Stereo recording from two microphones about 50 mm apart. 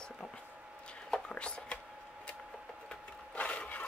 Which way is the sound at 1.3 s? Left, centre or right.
Left.